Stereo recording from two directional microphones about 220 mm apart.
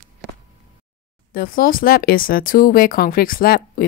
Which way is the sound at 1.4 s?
40° left (ahead or behind).